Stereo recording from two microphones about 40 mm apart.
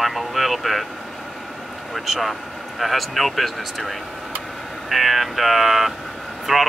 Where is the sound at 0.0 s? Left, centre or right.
Centre.